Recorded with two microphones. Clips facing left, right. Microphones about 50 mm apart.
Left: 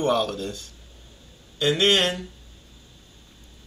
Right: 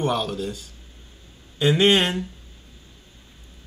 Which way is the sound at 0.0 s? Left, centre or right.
Centre.